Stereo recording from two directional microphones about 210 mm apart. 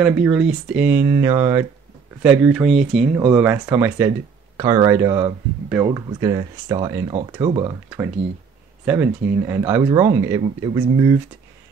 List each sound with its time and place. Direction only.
0.0 s speech: 5° right (ahead or behind)